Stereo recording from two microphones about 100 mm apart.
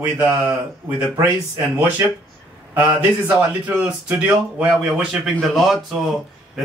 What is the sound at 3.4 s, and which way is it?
Speech, 15° right (ahead or behind).